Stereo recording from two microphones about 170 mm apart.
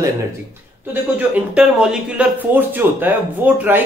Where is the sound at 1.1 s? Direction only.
5° right (ahead or behind).